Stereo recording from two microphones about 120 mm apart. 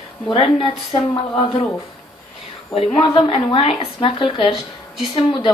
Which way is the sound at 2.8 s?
45° left (ahead or behind).